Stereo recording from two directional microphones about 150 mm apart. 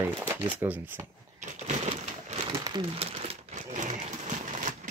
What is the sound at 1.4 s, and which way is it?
Crumpling, 50° right (ahead or behind).